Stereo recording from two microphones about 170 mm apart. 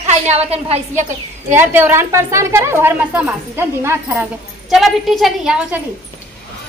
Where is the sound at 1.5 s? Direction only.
10° right (ahead or behind).